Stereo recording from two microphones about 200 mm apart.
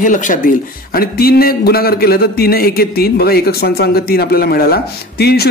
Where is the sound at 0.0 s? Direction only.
40° left (ahead or behind).